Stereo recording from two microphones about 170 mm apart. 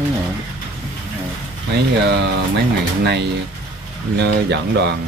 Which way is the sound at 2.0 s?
75° right (ahead or behind).